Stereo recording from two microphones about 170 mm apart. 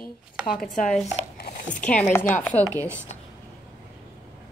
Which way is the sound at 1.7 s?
10° left (ahead or behind).